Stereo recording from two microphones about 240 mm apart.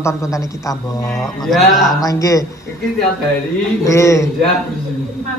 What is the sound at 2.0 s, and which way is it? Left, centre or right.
Speech, centre.